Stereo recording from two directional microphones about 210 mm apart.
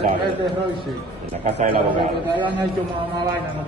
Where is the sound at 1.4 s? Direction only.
40° right (ahead or behind).